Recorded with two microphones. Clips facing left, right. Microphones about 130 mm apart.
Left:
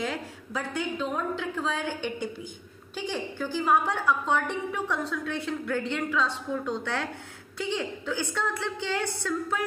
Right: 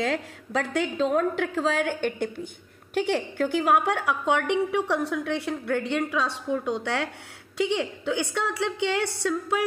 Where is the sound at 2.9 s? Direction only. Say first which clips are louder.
Right 7 dB; 70° right (ahead or behind).